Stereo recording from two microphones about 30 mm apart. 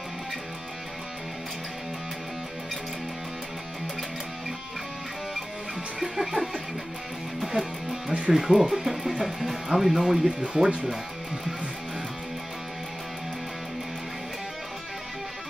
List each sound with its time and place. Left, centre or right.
5.9 s music: centre
8.3 s speech: centre
10.2 s speech: right